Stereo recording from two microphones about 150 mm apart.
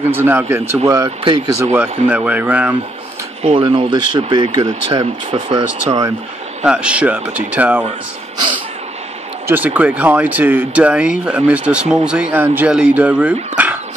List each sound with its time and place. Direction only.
0.1 s speech: 15° right (ahead or behind)
1.2 s speech: 35° right (ahead or behind)
2.0 s speech: 10° right (ahead or behind)
3.6 s speech: 30° right (ahead or behind)
4.6 s speech: 45° right (ahead or behind)
6.6 s speech: 5° right (ahead or behind)
9.5 s speech: 10° right (ahead or behind)